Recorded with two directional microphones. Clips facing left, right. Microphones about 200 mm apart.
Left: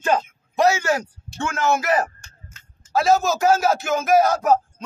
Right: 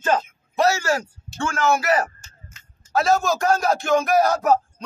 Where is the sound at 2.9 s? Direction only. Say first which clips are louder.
Left 1 dB; centre (ahead or behind).